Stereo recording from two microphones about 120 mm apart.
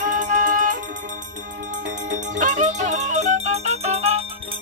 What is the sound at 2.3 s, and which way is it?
Music, 90° right.